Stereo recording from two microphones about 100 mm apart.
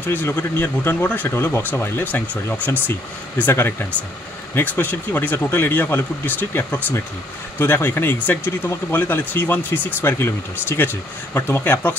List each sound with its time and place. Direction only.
0.0 s speech: 20° left (ahead or behind)